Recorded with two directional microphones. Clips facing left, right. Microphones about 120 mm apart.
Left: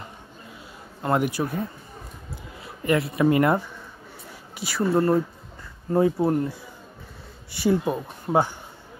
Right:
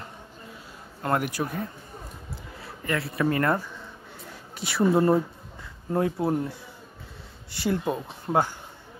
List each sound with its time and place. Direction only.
1.0 s speech: 5° left (ahead or behind)
2.6 s speech: 20° left (ahead or behind)
4.6 s speech: centre (ahead or behind)
4.8 s speech: 15° right (ahead or behind)
5.9 s speech: 5° left (ahead or behind)
7.6 s speech: 10° left (ahead or behind)